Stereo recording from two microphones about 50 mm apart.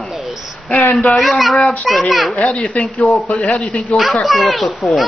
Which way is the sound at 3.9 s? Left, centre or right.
Centre.